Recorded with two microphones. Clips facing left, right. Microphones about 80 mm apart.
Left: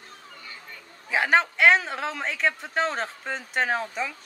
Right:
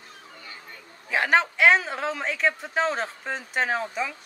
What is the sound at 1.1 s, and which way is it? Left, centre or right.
A man's voice, centre.